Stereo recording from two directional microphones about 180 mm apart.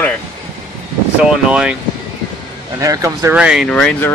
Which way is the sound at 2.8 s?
15° right (ahead or behind).